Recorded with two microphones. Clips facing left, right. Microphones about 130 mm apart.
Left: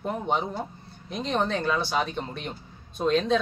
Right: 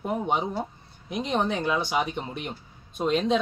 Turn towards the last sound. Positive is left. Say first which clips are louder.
# left 1 dB
turn(degrees=-15)  # may be behind; listen again after turning